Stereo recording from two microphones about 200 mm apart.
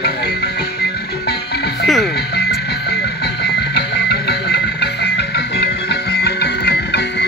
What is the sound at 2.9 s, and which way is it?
Music, 55° left (ahead or behind).